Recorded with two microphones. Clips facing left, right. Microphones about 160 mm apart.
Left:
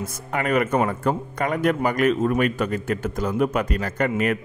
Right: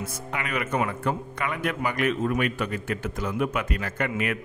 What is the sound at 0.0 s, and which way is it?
A man's voice, 45° left (ahead or behind).